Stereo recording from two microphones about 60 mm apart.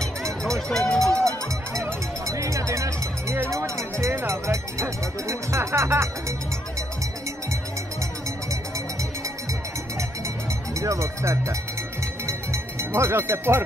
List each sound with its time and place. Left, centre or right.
0.0 s run: centre
1.7 s music: right
4.3 s speech: right
10.8 s speech: right
12.9 s speech: right